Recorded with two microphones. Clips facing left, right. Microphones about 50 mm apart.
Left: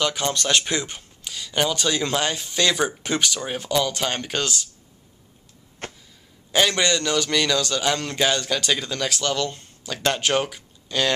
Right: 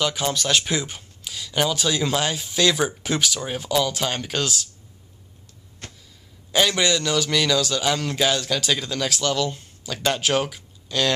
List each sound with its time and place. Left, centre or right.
0.0 s a man's voice: centre
5.8 s a sound: left
6.5 s a man's voice: centre